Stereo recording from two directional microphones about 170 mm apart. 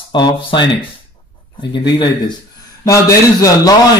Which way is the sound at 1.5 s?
25° left (ahead or behind).